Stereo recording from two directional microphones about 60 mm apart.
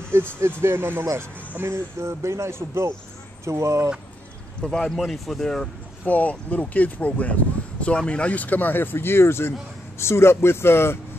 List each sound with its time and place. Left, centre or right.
0.1 s speech: right
1.6 s speech: right
4.6 s speech: centre
6.0 s speech: left